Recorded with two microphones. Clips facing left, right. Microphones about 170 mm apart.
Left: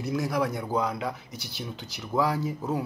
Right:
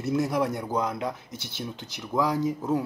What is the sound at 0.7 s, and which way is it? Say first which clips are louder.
Speech: even; centre (ahead or behind).